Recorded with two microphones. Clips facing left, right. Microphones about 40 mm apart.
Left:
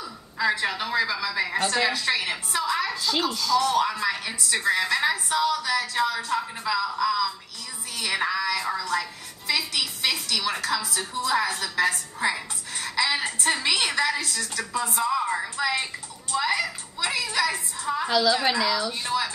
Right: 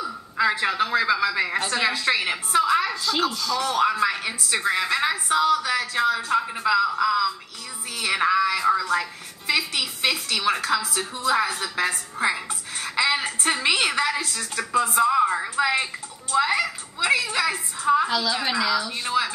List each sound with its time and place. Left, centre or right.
0.0 s a woman's voice: centre
1.6 s a woman's voice: centre
2.9 s a woman's voice: centre
3.5 s a woman's voice: centre
8.0 s a sound: centre
8.6 s a woman's voice: centre
18.0 s a woman's voice: centre